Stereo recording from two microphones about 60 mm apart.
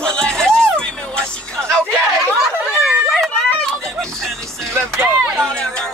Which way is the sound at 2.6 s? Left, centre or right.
Centre.